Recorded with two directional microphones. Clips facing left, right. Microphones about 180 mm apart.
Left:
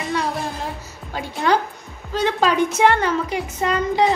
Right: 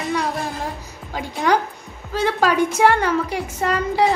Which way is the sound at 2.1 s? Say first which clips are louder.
Even; 10° right (ahead or behind).